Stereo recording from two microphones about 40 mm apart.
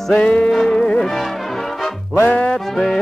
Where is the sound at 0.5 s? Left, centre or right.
Centre.